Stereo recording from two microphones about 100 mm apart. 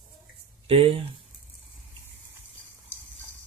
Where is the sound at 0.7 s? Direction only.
80° right.